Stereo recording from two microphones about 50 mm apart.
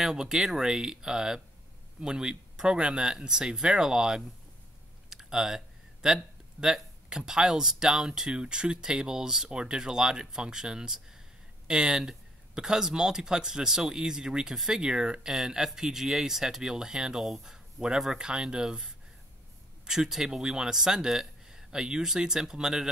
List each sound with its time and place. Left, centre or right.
0.0 s speech: centre
5.1 s typing: centre
6.6 s speech: centre